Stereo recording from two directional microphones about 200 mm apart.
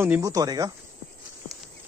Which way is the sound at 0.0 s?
15° right (ahead or behind).